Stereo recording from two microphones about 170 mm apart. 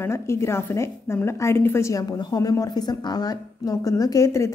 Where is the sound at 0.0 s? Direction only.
15° left (ahead or behind).